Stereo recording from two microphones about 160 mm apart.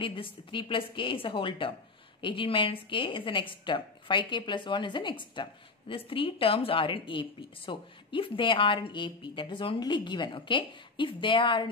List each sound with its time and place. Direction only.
0.0 s a woman's voice: 30° left (ahead or behind)